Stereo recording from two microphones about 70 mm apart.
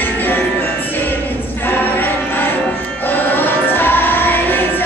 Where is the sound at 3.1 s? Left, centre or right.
Left.